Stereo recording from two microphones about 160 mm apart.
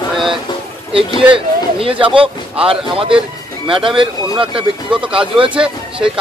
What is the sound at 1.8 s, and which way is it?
Speech, 35° right (ahead or behind).